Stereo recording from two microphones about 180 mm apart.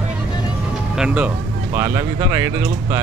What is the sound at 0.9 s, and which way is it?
Speech, 5° right (ahead or behind).